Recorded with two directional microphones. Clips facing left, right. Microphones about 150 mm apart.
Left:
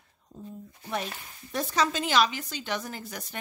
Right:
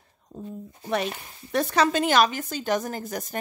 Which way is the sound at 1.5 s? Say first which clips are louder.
Right 6 dB; 65° right (ahead or behind).